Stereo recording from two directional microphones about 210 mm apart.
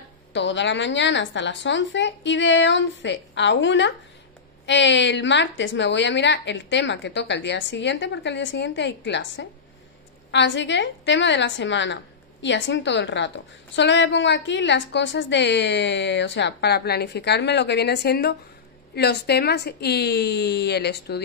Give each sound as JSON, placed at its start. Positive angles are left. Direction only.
{"t": 0.3, "sound": "a woman's voice", "side_deg": 60}